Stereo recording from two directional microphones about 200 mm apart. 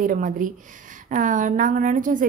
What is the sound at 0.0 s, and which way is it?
A woman's voice, 40° right (ahead or behind).